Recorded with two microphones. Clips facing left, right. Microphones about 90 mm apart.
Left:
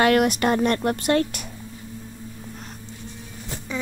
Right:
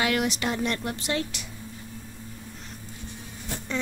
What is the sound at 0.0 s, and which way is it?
Speech, 50° left (ahead or behind).